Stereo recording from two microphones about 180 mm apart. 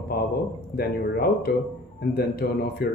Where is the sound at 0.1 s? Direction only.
55° left (ahead or behind).